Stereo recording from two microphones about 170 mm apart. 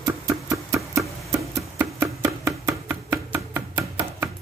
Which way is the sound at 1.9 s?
15° right (ahead or behind).